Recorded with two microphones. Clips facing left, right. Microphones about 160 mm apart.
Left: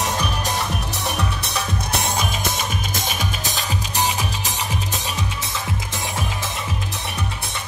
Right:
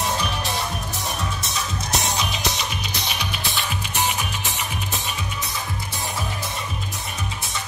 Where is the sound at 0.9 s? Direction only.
65° left (ahead or behind); by 4.6 s 35° left (ahead or behind).